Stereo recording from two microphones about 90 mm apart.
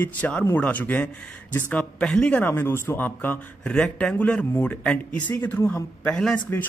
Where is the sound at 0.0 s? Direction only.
15° left (ahead or behind).